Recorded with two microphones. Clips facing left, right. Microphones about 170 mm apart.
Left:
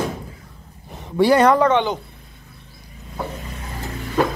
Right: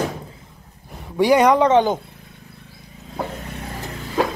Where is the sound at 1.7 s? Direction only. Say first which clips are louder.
Right 3 dB; 40° right (ahead or behind).